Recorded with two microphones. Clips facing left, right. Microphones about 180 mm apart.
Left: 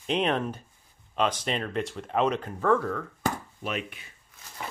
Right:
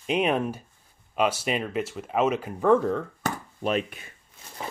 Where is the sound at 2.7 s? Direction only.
20° right (ahead or behind).